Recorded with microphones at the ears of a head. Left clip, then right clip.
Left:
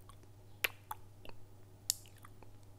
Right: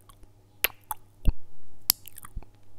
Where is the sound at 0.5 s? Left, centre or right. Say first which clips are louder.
Right 7 dB; right.